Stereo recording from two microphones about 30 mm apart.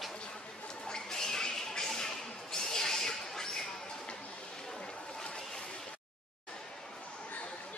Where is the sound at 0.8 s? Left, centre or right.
Left.